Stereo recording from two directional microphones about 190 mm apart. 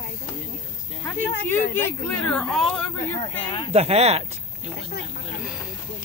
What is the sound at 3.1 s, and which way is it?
Speech, 25° left (ahead or behind).